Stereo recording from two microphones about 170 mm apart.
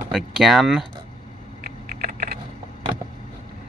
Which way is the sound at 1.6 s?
60° right (ahead or behind).